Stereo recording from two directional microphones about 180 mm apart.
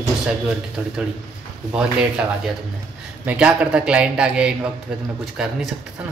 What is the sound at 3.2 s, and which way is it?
A man's voice, 5° right (ahead or behind).